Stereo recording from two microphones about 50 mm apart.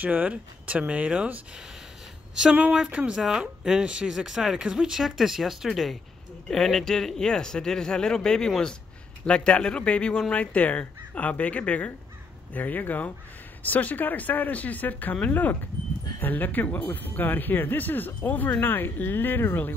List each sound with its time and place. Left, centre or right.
0.0 s speech: right
2.9 s speech: right
3.2 s speech: centre
9.2 s speech: left